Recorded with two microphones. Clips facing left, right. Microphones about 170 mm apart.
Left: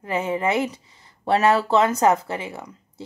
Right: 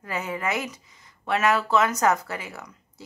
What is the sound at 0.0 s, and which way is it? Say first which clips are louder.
Speech: left 6 dB; 25° left (ahead or behind).